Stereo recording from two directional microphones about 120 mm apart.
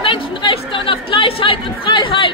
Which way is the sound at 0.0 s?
45° left (ahead or behind).